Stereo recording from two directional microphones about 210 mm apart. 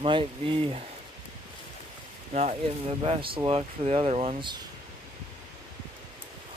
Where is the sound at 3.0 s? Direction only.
25° right (ahead or behind).